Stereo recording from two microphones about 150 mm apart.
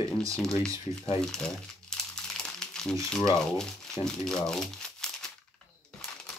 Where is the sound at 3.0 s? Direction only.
5° left (ahead or behind).